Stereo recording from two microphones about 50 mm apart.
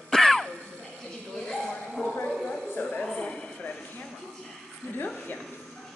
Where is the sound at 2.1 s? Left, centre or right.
Left.